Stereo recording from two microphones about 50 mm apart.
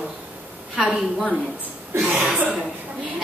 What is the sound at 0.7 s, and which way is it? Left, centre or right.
Speech, centre.